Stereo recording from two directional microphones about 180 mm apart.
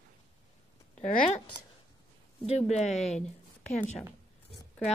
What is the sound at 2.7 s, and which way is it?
Speech, 40° left (ahead or behind).